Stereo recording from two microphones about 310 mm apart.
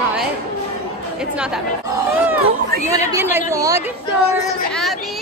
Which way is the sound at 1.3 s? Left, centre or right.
Centre.